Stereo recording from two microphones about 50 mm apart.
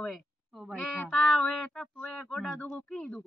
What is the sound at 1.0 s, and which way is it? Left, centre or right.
Speech, centre.